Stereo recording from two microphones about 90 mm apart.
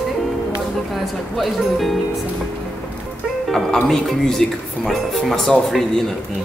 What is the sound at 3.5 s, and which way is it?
Speech, centre (ahead or behind).